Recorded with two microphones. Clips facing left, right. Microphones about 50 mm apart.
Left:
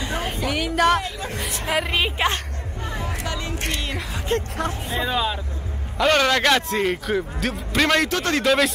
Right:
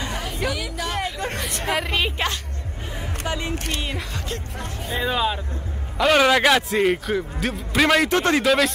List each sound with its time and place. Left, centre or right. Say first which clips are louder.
0.5 s speech: left 13 dB; left
1.7 s a woman's voice: left 1 dB; centre
3.0 s music: right 2 dB; right
4.3 s speech: left 12 dB; left
4.8 s a man's voice: right 3 dB; centre
8.1 s speech: right 4 dB; right
8.4 s speech: even; centre